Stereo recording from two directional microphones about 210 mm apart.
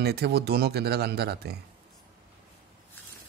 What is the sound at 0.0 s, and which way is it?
A man's voice, 50° right (ahead or behind).